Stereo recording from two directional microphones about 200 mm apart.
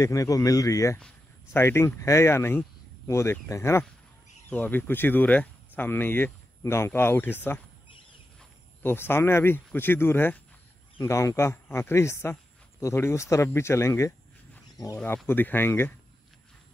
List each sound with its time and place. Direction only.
0.0 s speech: 15° left (ahead or behind)